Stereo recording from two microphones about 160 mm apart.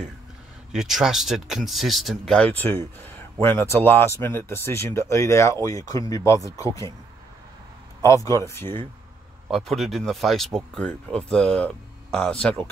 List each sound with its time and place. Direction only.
0.7 s speech: centre (ahead or behind); by 6.9 s 20° left (ahead or behind)
8.0 s speech: 20° left (ahead or behind)
9.5 s speech: centre (ahead or behind)